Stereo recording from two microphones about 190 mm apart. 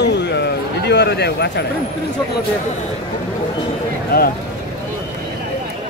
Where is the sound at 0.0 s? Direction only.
65° left (ahead or behind).